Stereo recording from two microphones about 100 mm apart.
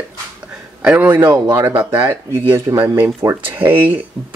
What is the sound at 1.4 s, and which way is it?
Speech, 30° right (ahead or behind).